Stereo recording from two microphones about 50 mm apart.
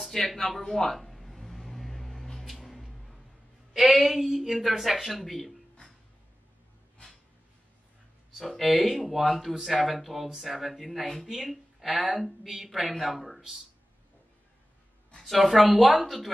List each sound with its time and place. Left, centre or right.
0.0 s a sound: centre
3.7 s speech: centre
8.4 s speech: centre
15.1 s speech: centre